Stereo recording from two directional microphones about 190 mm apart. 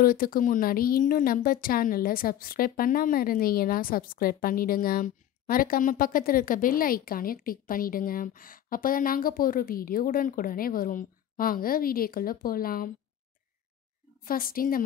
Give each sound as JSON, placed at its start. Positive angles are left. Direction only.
{"t": 0.0, "sound": "speech", "side_deg": 50}
{"t": 14.2, "sound": "speech", "side_deg": 50}